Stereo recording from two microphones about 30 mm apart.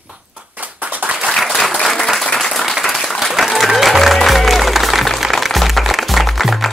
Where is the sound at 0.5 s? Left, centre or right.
Right.